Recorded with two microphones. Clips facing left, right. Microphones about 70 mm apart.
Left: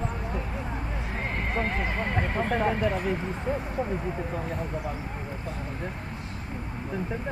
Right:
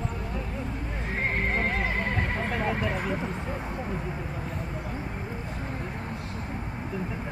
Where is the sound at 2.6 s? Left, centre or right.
Left.